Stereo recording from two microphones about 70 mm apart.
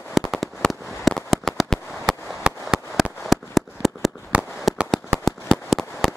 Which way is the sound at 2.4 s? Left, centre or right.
Centre.